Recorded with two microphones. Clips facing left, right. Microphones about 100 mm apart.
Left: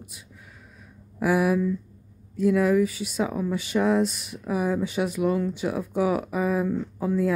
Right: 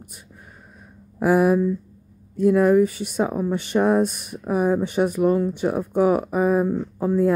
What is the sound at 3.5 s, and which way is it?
Speech, 55° right (ahead or behind).